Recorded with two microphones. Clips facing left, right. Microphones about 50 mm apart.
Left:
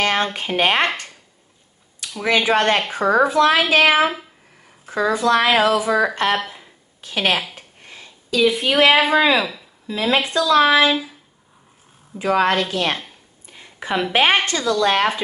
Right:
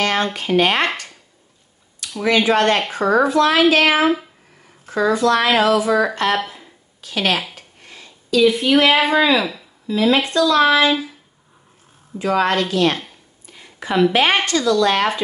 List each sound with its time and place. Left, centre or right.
0.0 s speech: left
2.2 s a woman's voice: centre
7.5 s a sound: left
8.4 s a woman's voice: centre
9.8 s a woman's voice: centre
12.2 s a woman's voice: centre
13.5 s a sound: left
14.1 s speech: left